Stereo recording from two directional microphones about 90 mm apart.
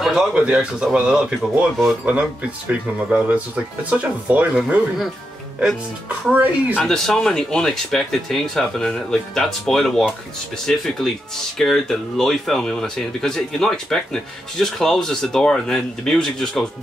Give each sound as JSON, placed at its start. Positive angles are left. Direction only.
{"t": 0.0, "sound": "speech", "side_deg": -10}
{"t": 3.1, "sound": "speech", "side_deg": -10}
{"t": 6.3, "sound": "speech", "side_deg": -20}
{"t": 6.8, "sound": "speech", "side_deg": 5}